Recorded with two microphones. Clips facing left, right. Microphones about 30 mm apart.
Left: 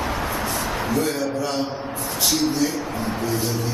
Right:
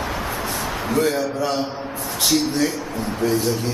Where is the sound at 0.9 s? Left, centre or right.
Centre.